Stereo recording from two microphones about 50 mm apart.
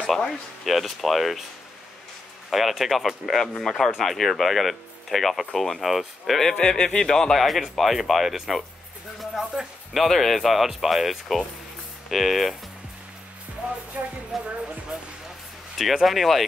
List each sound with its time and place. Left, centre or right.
0.7 s speech: centre
2.5 s speech: centre
6.6 s speech: centre
9.2 s music: centre
9.9 s speech: centre
13.6 s music: right
14.3 s speech: centre
15.8 s speech: centre